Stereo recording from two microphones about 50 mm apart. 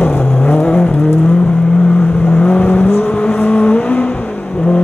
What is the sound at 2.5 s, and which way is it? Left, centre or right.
Vehicle, left.